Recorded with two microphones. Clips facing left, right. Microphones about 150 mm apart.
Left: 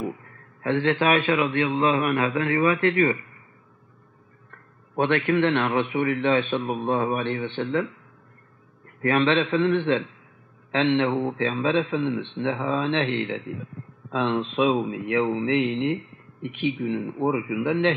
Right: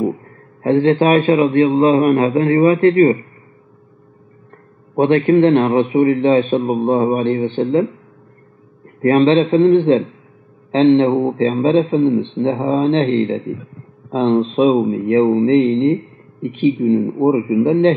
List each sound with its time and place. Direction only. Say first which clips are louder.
0.0 s a man's voice: right 11 dB; 35° right (ahead or behind)
4.5 s a man's voice: right 8 dB; 35° right (ahead or behind)
9.0 s a man's voice: right 9 dB; 35° right (ahead or behind)